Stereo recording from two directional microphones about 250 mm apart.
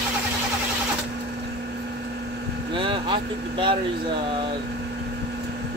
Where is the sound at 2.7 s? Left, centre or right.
Centre.